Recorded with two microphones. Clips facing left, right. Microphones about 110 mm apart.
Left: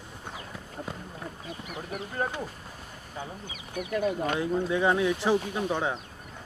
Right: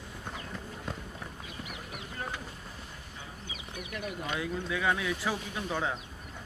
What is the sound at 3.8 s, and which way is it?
Speech, 35° left (ahead or behind).